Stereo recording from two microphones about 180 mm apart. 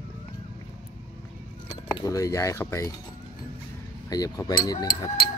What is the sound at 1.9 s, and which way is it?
Speech, 20° left (ahead or behind).